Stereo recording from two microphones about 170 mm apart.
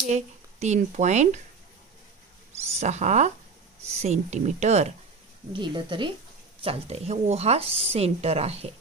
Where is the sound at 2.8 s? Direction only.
40° right (ahead or behind).